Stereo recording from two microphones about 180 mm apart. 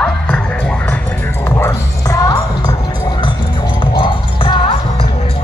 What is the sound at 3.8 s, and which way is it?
Music, 30° left (ahead or behind).